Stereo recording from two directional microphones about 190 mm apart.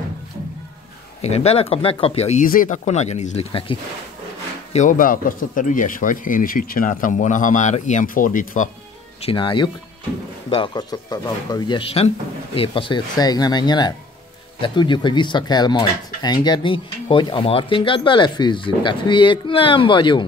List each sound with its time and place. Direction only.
1.2 s speech: 35° left (ahead or behind)
2.4 s speech: 45° left (ahead or behind); by 3.7 s 30° left (ahead or behind)
4.7 s speech: 45° left (ahead or behind)
9.2 s speech: 25° left (ahead or behind)